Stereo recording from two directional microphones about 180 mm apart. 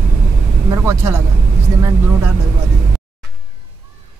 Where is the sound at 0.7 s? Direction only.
15° right (ahead or behind).